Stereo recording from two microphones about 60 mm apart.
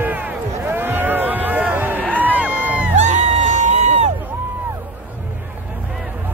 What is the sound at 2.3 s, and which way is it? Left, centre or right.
Music, right.